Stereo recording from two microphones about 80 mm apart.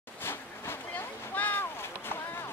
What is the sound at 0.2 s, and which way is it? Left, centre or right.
Boat, left.